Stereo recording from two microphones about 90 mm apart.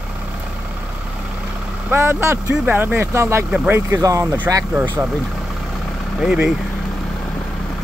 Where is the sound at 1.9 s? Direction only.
25° right (ahead or behind).